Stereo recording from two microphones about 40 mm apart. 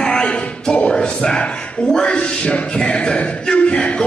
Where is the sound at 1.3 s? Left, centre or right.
Centre.